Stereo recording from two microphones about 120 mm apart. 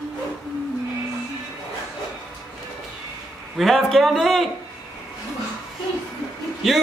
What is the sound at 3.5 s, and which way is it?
Speech, centre (ahead or behind).